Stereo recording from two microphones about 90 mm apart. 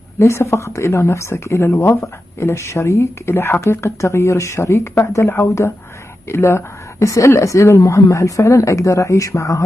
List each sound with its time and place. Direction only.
0.2 s a woman's voice: 30° left (ahead or behind)